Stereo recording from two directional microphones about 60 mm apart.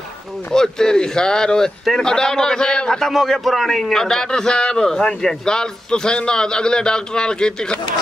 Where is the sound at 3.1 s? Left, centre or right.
Centre.